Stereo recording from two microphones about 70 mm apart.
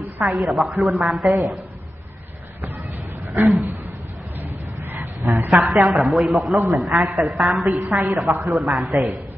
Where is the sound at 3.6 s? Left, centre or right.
Right.